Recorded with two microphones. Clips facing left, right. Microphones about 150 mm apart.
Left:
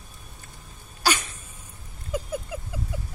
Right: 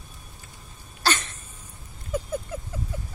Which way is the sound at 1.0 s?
10° left (ahead or behind).